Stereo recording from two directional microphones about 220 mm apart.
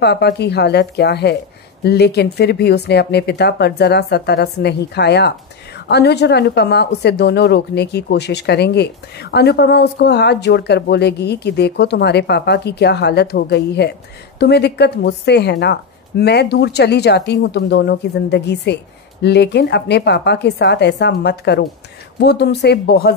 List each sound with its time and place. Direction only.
0.0 s speech: 50° left (ahead or behind)